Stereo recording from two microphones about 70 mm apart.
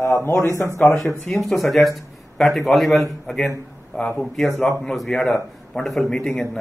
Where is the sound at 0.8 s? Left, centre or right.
Left.